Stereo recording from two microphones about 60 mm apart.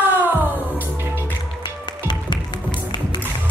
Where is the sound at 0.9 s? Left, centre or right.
Right.